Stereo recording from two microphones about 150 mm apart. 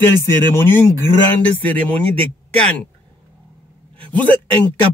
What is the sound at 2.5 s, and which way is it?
Speech, 5° left (ahead or behind).